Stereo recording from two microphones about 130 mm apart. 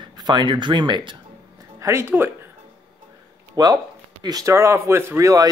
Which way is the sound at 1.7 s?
20° right (ahead or behind).